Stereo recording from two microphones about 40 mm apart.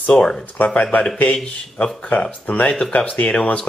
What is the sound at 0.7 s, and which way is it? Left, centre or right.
Speech, left.